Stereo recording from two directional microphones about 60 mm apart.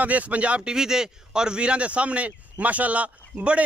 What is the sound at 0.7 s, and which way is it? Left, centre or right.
Speech, centre.